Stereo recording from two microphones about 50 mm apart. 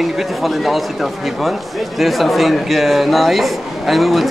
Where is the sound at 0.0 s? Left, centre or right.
Centre.